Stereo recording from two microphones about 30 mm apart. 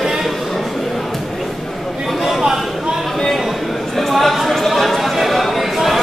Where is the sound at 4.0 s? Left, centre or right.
Centre.